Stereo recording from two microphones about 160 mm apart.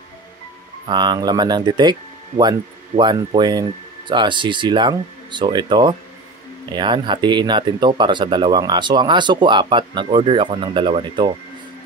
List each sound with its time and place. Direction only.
0.8 s speech: 30° right (ahead or behind)